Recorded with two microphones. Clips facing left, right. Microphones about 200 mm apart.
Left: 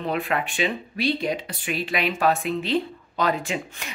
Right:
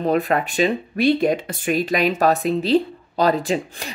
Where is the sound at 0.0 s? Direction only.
40° right (ahead or behind).